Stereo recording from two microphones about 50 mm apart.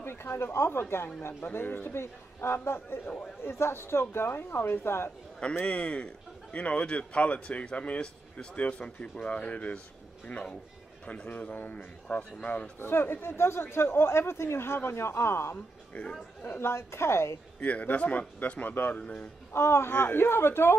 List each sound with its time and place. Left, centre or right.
0.0 s speech: left
2.0 s speech: left
5.7 s speech: left
10.3 s speech: centre
12.7 s speech: left
15.5 s speech: left
16.4 s speech: left
17.6 s speech: left
18.9 s speech: left
19.5 s speech: left